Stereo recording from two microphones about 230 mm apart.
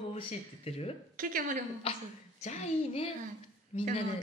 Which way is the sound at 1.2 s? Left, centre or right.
Right.